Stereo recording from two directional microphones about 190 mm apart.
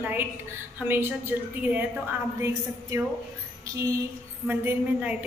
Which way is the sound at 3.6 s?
15° right (ahead or behind).